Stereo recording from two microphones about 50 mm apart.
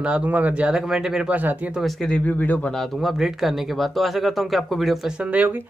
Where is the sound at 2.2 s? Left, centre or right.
Left.